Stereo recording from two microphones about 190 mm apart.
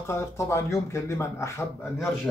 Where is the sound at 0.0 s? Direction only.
15° left (ahead or behind).